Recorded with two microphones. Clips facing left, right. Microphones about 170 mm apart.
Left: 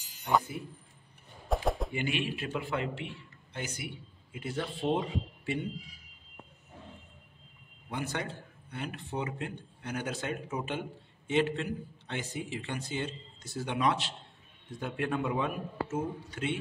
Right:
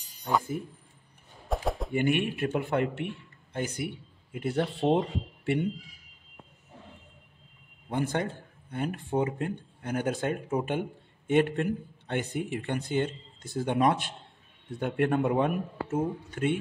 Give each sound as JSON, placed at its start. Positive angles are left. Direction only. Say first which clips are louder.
{"t": 1.5, "sound": "a sound", "louder": "even", "side_deg": 0}
{"t": 2.0, "sound": "a man's voice", "louder": "right 7 dB", "side_deg": -55}
{"t": 7.9, "sound": "a man's voice", "louder": "right 6 dB", "side_deg": -50}